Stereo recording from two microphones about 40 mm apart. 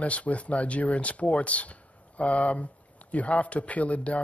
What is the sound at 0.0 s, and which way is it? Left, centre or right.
Speech, left.